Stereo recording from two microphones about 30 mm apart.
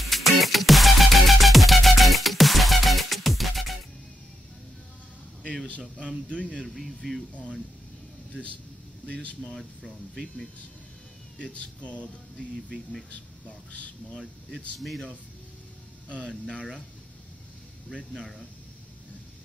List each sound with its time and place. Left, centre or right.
0.0 s music: centre
6.6 s speech: centre
9.1 s speech: left
9.4 s speech: centre
11.8 s speech: left
13.7 s speech: left
16.1 s speech: left
18.1 s speech: centre